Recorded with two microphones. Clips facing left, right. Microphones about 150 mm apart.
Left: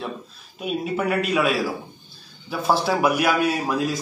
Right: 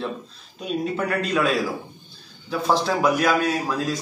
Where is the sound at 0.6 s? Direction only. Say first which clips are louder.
Even; 10° left (ahead or behind).